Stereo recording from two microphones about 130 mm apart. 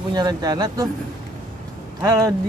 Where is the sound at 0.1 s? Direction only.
30° right (ahead or behind).